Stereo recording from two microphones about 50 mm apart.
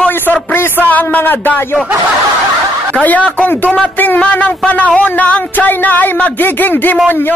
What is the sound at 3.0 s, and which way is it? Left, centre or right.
A man's voice, left.